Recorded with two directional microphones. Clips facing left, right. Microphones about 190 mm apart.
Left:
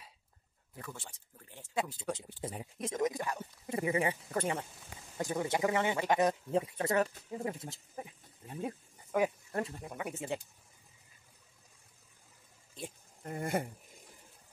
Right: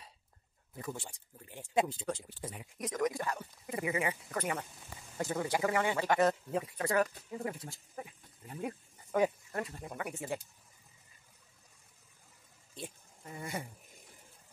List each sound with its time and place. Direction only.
0.7 s speech: 15° right (ahead or behind)
2.0 s speech: 15° left (ahead or behind)
2.4 s speech: 30° left (ahead or behind)
5.1 s speech: 15° left (ahead or behind)
9.9 s speech: 20° left (ahead or behind)
13.2 s speech: 55° left (ahead or behind)